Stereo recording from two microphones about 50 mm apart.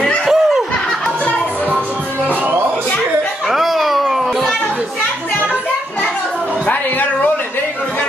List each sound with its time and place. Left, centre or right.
0.3 s snicker: centre
3.4 s children playing: centre
6.6 s a sound: left